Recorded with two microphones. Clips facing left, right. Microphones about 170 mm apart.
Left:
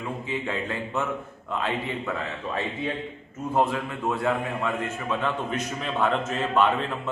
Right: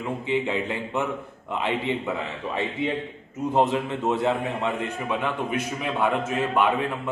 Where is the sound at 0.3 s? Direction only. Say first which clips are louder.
Right 5 dB; 20° right (ahead or behind).